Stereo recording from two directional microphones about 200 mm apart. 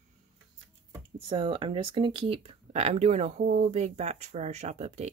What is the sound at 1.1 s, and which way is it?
Speech, 25° right (ahead or behind).